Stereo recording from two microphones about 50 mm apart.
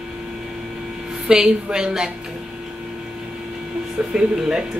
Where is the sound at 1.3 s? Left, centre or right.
Centre.